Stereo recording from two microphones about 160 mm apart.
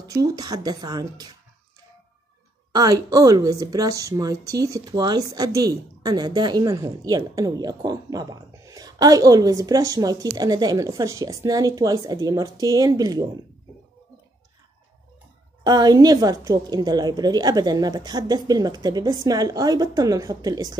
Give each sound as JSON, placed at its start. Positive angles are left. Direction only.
{"t": 0.1, "sound": "a woman's voice", "side_deg": -20}
{"t": 2.7, "sound": "a woman's voice", "side_deg": -25}
{"t": 15.6, "sound": "a woman's voice", "side_deg": -25}